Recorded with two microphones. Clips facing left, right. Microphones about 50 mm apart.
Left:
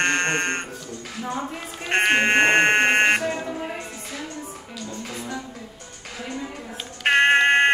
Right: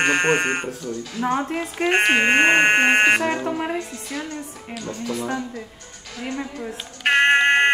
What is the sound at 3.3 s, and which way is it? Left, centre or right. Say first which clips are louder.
Music: right 5 dB; right.